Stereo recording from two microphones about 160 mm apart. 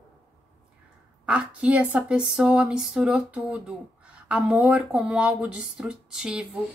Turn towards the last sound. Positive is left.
turn(degrees=-5)  # may be behind; listen again after turning